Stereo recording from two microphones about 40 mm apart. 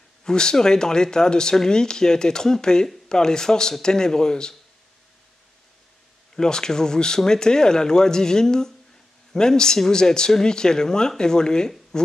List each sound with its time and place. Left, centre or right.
0.2 s speech: centre
6.3 s speech: centre